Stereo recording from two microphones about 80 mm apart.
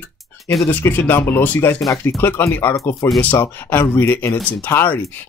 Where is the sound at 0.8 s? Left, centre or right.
Left.